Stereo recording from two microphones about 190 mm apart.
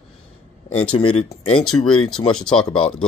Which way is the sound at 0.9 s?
30° left (ahead or behind).